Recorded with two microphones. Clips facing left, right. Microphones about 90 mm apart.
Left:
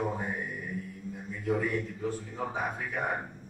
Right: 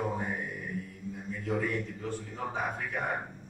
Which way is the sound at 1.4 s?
5° left (ahead or behind).